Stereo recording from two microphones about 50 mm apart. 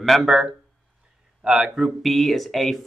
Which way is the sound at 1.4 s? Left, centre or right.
Right.